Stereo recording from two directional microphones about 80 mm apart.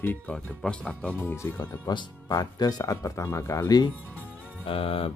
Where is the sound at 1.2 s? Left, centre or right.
Left.